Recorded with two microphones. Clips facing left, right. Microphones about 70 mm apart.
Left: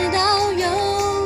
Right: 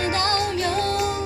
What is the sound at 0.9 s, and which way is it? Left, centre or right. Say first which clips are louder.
Music: left 4 dB; centre.